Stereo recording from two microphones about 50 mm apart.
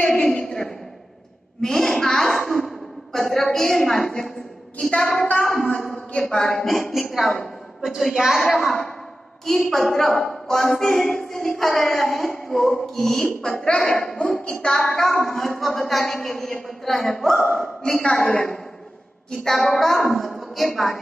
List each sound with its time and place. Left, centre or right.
0.0 s a sound: centre
1.6 s a woman's voice: centre
19.3 s a woman's voice: centre